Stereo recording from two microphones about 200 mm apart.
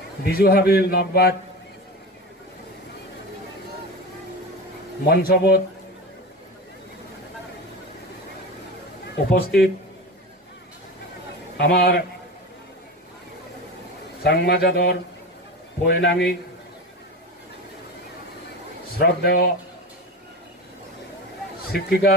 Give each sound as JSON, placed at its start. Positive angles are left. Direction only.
{"t": 0.2, "sound": "a man's voice", "side_deg": 50}
{"t": 5.0, "sound": "a man's voice", "side_deg": 50}
{"t": 9.1, "sound": "a man's voice", "side_deg": 50}
{"t": 11.5, "sound": "a man's voice", "side_deg": 50}
{"t": 14.2, "sound": "a man's voice", "side_deg": 55}
{"t": 18.9, "sound": "a man's voice", "side_deg": 55}
{"t": 21.7, "sound": "a man's voice", "side_deg": 50}